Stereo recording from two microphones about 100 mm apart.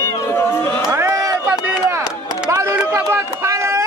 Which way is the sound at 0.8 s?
30° right (ahead or behind).